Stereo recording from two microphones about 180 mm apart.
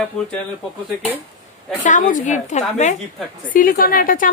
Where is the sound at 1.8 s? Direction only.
45° left (ahead or behind).